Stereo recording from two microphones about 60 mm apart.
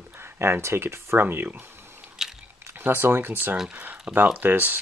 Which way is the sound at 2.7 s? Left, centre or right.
Right.